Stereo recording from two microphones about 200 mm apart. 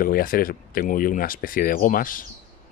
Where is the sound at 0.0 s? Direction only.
45° left (ahead or behind).